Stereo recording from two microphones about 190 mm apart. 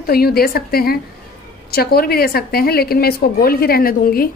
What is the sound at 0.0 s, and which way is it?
A woman's voice, 55° left (ahead or behind).